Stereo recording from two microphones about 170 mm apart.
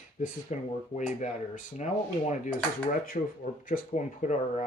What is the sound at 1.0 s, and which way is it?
Speech, 45° left (ahead or behind).